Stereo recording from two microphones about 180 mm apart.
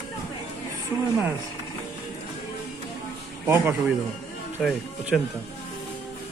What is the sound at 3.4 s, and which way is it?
Speech, 15° right (ahead or behind).